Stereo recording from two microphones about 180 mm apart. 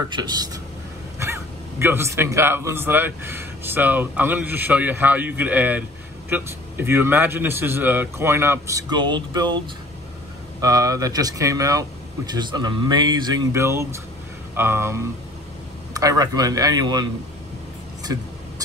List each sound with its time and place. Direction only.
0.1 s a man's voice: 25° right (ahead or behind)
10.6 s a man's voice: 20° right (ahead or behind)